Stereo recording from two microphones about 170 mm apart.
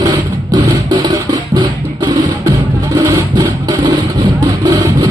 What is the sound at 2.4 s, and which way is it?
Music, 20° right (ahead or behind).